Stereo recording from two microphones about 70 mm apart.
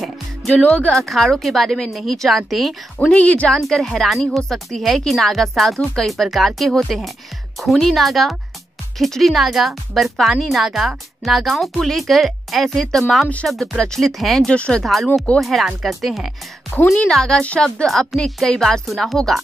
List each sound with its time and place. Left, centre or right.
0.5 s speech: centre
0.9 s speech: centre
3.1 s speech: centre
3.5 s speech: centre
14.5 s a woman's voice: centre
14.8 s speech: centre
16.8 s a woman's voice: centre